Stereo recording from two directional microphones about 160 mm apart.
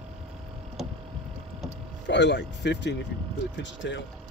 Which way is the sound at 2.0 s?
90° left.